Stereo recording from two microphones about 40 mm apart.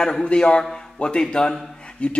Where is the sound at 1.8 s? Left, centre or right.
Left.